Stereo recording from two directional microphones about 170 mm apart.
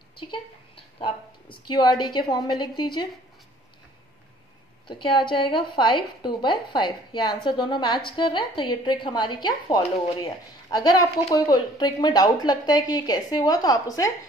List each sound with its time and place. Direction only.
0.9 s a woman's voice: 30° left (ahead or behind)
4.8 s a woman's voice: 30° left (ahead or behind)